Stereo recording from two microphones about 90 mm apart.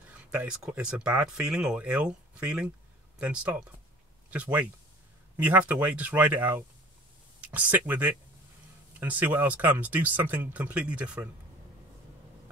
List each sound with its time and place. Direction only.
0.2 s speech: 15° right (ahead or behind)
7.5 s speech: 15° right (ahead or behind)